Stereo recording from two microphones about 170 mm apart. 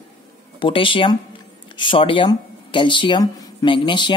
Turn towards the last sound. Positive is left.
turn(degrees=30)  # may be behind; listen again after turning